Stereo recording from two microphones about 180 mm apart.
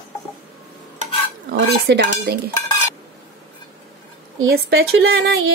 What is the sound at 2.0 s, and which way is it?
Speech, 60° right (ahead or behind).